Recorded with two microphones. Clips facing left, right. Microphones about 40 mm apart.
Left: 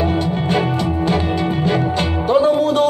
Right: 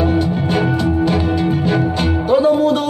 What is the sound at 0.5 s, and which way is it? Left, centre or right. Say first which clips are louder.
Music: right 2 dB; centre.